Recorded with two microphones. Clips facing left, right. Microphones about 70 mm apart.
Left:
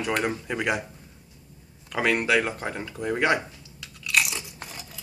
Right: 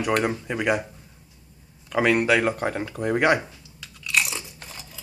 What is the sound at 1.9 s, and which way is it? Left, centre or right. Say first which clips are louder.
Speech: right 3 dB; centre.